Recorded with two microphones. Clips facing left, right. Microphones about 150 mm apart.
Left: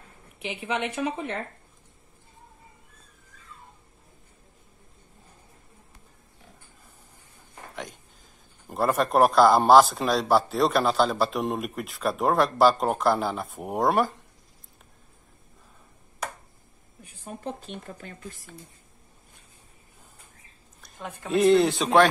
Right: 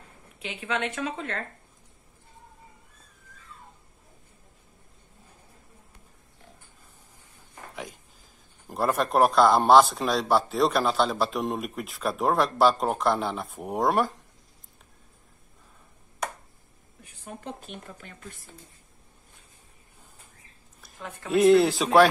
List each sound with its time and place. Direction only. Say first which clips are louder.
0.6 s a woman's voice: left 1 dB; 20° left (ahead or behind)
7.7 s a sound: left 1 dB; centre (ahead or behind)
8.6 s speech: left 2 dB; centre (ahead or behind)
21.3 s speech: right 1 dB; centre (ahead or behind)